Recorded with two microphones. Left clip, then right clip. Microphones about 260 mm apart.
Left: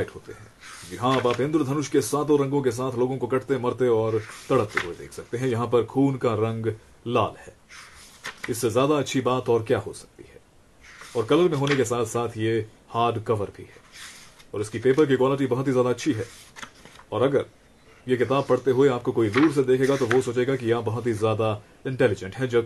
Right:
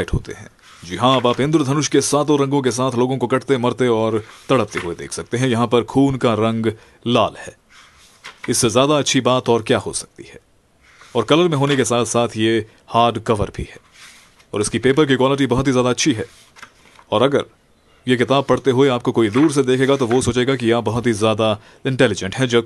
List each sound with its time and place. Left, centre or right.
0.9 s speech: right
8.2 s a sound: centre
8.5 s speech: right
11.1 s speech: right